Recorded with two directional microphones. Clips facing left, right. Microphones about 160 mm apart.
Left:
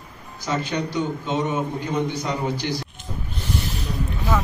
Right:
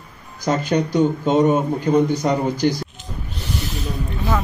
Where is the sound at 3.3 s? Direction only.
55° left (ahead or behind).